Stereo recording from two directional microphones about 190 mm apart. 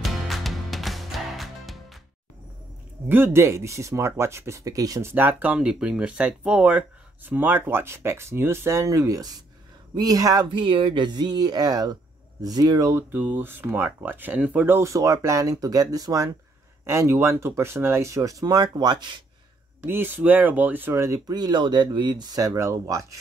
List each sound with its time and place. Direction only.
0.0 s music: centre (ahead or behind)
3.1 s speech: 15° right (ahead or behind)
19.8 s speech: 10° right (ahead or behind)